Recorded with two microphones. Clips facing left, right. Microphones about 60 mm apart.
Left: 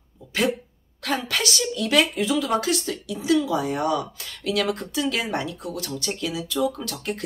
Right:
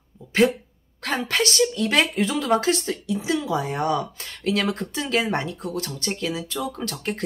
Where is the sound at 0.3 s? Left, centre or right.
Right.